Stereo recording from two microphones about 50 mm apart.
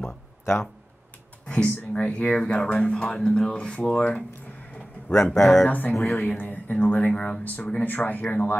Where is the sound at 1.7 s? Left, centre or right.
Left.